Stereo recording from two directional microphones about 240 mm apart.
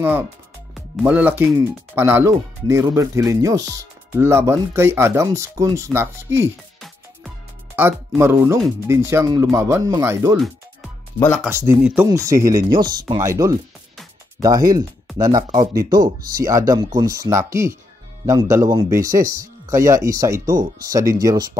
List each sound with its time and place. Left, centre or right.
0.7 s speech: centre
11.1 s speech: centre
11.4 s speech: centre